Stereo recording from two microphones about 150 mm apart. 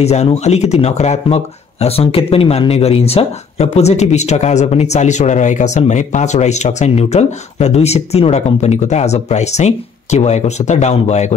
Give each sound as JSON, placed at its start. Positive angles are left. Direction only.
{"t": 0.0, "sound": "speech", "side_deg": 45}